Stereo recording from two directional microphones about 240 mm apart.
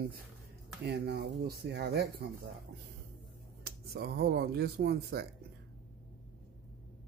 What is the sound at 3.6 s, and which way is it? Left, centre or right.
Speech, right.